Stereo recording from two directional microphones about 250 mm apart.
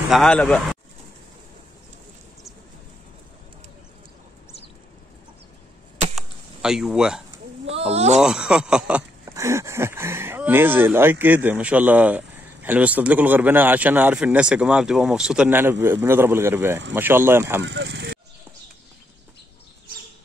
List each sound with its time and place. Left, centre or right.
0.1 s speech: centre
6.1 s a sound: centre
7.6 s speech: right
8.2 s speech: centre
17.6 s speech: right